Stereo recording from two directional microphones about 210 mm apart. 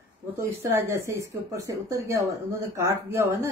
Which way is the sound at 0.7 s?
10° right (ahead or behind).